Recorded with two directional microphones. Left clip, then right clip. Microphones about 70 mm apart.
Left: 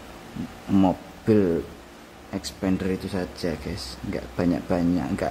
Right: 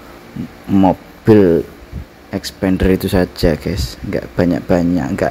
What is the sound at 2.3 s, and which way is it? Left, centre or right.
Speech, right.